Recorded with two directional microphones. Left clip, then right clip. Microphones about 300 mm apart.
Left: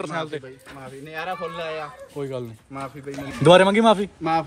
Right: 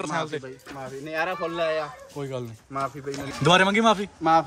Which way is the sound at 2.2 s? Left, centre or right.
Centre.